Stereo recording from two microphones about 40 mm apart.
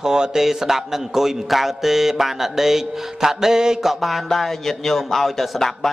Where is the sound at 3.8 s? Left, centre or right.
Centre.